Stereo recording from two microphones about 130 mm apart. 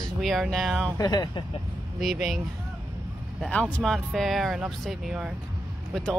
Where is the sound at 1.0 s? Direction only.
35° left (ahead or behind).